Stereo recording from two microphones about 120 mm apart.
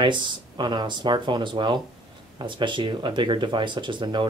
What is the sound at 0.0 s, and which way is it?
Speech, 40° right (ahead or behind).